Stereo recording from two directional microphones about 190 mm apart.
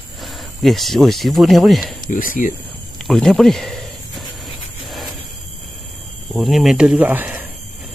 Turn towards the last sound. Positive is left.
turn(degrees=-10)  # may be behind; listen again after turning